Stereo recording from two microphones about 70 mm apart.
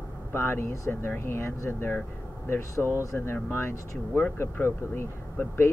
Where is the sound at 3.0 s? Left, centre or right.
Left.